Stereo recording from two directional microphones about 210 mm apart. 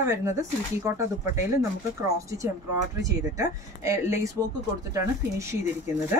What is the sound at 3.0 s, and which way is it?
Speech, 15° right (ahead or behind).